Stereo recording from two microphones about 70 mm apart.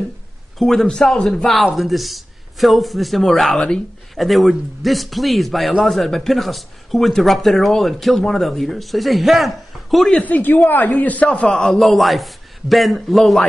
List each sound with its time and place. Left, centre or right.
0.6 s a man's voice: centre
10.2 s a man's voice: left
11.5 s a man's voice: centre